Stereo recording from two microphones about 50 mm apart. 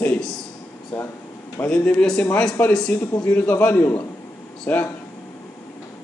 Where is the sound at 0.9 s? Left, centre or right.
Left.